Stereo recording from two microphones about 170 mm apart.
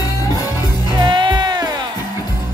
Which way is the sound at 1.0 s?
25° right (ahead or behind).